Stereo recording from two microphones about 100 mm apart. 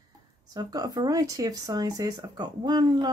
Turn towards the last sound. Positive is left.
turn(degrees=-50)  # may be behind; listen again after turning